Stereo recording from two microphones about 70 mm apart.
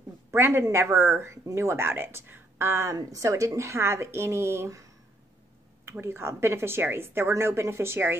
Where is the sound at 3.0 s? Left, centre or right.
Right.